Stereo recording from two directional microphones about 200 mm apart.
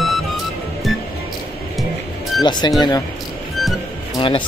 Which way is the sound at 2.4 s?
20° left (ahead or behind).